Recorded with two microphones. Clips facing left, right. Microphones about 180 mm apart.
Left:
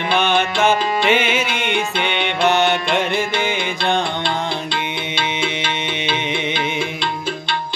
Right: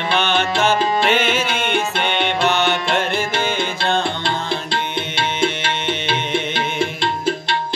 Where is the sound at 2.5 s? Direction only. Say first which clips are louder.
Left 5 dB; 15° left (ahead or behind).